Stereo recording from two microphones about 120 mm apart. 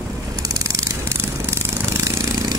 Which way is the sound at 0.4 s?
30° right (ahead or behind).